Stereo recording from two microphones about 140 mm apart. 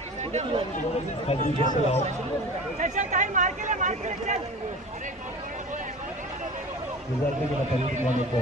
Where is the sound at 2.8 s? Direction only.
60° right (ahead or behind).